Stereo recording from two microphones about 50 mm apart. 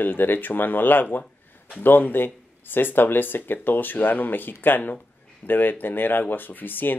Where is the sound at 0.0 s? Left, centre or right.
Left.